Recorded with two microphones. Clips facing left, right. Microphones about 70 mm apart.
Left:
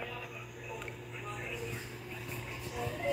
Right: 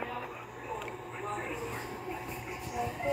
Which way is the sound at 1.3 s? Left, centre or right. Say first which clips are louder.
Right 6 dB; right.